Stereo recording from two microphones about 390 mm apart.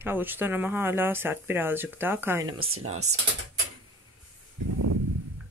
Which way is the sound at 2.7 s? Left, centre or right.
Right.